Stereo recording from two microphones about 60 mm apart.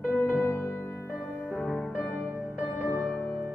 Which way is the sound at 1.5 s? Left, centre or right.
Centre.